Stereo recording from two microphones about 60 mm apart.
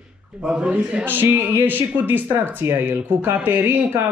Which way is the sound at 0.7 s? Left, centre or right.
Right.